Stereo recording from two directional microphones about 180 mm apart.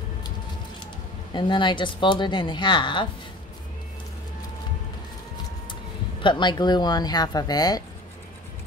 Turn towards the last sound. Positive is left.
turn(degrees=20)  # may be behind; listen again after turning